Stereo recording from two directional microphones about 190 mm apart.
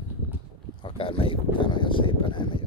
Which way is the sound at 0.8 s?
30° left (ahead or behind).